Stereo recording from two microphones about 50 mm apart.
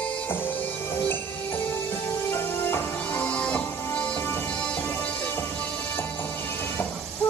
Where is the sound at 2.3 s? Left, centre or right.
Left.